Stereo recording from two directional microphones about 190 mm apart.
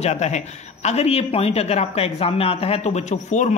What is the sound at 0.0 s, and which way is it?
Speech, 35° left (ahead or behind).